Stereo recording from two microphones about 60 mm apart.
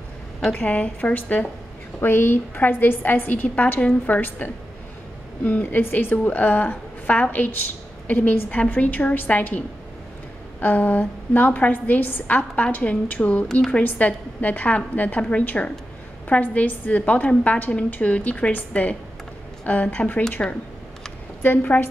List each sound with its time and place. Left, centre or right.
0.5 s a woman's voice: left
2.0 s a woman's voice: left
5.6 s a woman's voice: left
13.5 s a woman's voice: centre
13.8 s a woman's voice: left
21.4 s a woman's voice: left